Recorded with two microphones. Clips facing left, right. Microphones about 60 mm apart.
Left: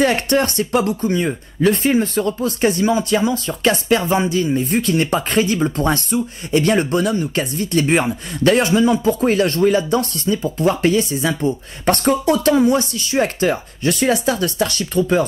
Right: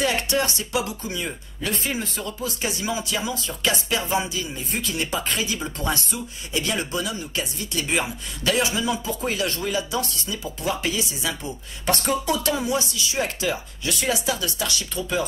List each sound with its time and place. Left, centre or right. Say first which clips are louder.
0.0 s speech: left 7 dB; left